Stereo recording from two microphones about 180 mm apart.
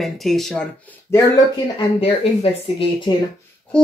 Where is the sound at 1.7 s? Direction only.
35° left (ahead or behind).